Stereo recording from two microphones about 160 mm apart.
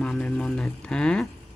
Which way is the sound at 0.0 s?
5° left (ahead or behind).